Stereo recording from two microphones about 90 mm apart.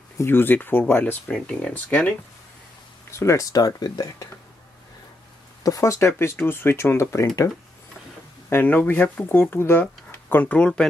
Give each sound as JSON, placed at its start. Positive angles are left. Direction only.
{"t": 0.2, "sound": "speech", "side_deg": 25}
{"t": 1.3, "sound": "speech", "side_deg": 10}
{"t": 3.1, "sound": "speech", "side_deg": 30}
{"t": 5.6, "sound": "speech", "side_deg": 40}
{"t": 8.5, "sound": "speech", "side_deg": 20}